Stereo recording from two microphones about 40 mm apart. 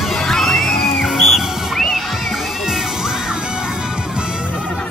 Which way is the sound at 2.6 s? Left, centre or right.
Centre.